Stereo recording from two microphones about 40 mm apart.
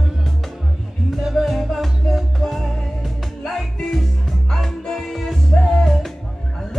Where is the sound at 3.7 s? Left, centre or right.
Centre.